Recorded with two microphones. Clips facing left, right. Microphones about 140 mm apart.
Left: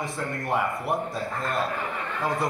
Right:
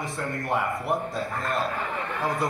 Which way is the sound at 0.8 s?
Centre (ahead or behind).